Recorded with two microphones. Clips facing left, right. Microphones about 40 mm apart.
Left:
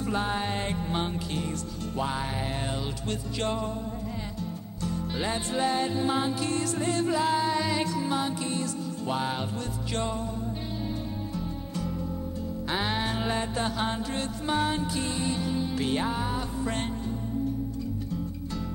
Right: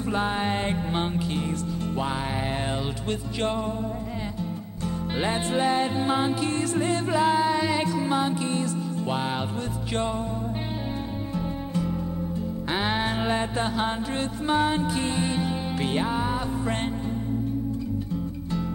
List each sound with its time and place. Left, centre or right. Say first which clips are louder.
0.1 s music: right 4 dB; right
3.1 s music: right 3 dB; right
11.3 s music: right 5 dB; right